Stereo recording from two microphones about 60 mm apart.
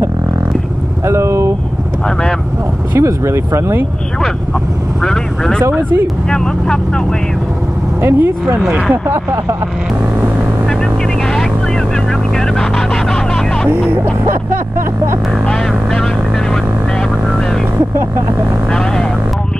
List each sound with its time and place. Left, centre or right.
1.0 s vehicle: right
3.0 s speech: right
5.0 s speech: centre
5.6 s speech: right
6.3 s speech: centre
8.0 s speech: right
12.4 s vehicle: centre
15.4 s speech: centre